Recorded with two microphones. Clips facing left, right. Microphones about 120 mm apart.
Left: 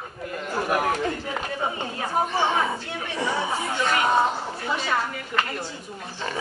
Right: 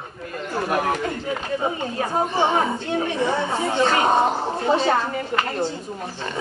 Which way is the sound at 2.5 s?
35° right (ahead or behind).